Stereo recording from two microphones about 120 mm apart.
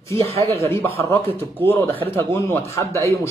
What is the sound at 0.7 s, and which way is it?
A man's voice, 25° left (ahead or behind).